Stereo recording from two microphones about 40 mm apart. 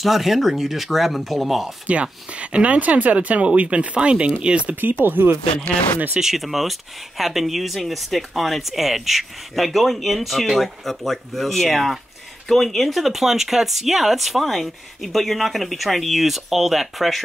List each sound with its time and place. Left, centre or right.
0.0 s speech: centre
1.9 s speech: right
5.0 s speech: right
6.1 s speech: centre